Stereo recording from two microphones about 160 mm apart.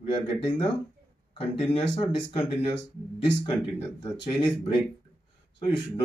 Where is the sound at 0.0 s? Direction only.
35° left (ahead or behind).